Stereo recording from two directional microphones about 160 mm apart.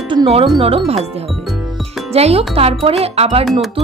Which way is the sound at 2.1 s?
40° right (ahead or behind).